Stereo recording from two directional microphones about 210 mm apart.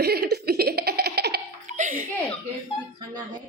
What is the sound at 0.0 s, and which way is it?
Laughter, 50° right (ahead or behind).